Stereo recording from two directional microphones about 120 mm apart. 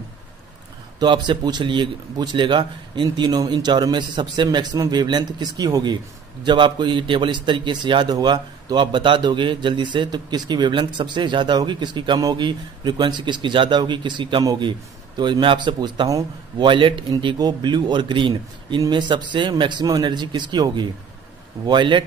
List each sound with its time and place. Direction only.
0.9 s a man's voice: 40° right (ahead or behind)
16.1 s a man's voice: 30° right (ahead or behind)
16.6 s a man's voice: 45° right (ahead or behind)